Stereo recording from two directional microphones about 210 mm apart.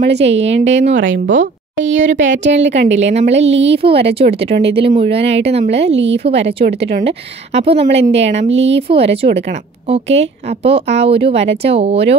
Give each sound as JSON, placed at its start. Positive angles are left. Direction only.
{"t": 0.0, "sound": "a woman's voice", "side_deg": -55}
{"t": 3.1, "sound": "a woman's voice", "side_deg": -30}
{"t": 3.3, "sound": "a woman's voice", "side_deg": -60}
{"t": 3.7, "sound": "speech", "side_deg": -25}
{"t": 5.9, "sound": "a woman's voice", "side_deg": -60}
{"t": 6.2, "sound": "speech", "side_deg": -30}
{"t": 8.5, "sound": "a woman's voice", "side_deg": -60}
{"t": 8.8, "sound": "speech", "side_deg": -25}